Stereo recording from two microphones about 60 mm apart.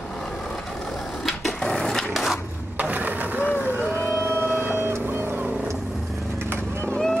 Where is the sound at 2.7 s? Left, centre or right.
Right.